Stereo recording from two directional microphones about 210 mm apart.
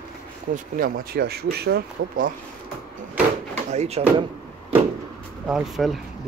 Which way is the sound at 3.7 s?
30° right (ahead or behind).